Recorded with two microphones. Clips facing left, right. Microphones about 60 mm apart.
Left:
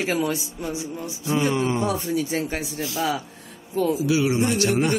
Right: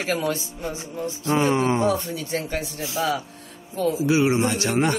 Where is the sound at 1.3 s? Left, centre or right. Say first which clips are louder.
Right 2 dB; right.